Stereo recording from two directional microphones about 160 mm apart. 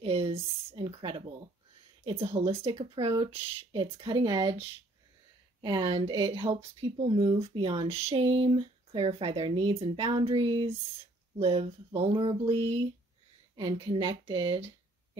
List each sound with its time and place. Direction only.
0.0 s speech: 40° right (ahead or behind)
5.6 s speech: 30° right (ahead or behind)